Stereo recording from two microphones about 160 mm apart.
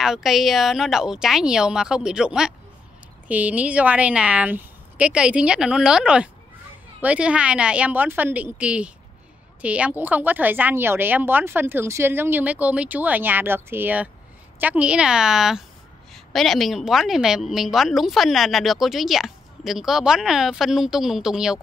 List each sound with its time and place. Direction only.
0.0 s a woman's voice: centre (ahead or behind)